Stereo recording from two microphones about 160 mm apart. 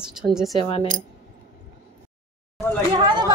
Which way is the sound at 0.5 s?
35° left (ahead or behind).